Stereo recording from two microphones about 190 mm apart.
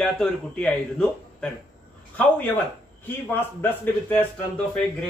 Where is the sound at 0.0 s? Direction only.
5° left (ahead or behind).